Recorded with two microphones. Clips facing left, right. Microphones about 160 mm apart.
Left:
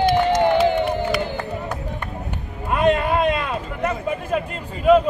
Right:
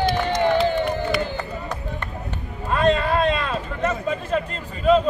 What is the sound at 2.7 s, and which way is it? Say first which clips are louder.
Speech: left 1 dB; 15° left (ahead or behind).